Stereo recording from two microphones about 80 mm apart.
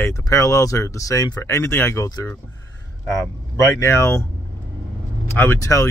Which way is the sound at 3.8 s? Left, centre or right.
Left.